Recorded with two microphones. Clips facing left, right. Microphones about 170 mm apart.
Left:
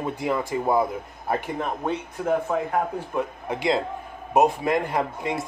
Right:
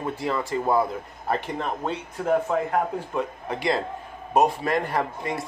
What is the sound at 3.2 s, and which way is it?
Speech, 15° left (ahead or behind).